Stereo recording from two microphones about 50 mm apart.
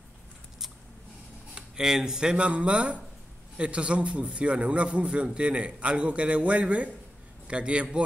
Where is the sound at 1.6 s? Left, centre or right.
Centre.